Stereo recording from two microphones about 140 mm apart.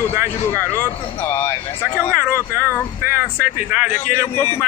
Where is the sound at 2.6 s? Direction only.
15° left (ahead or behind).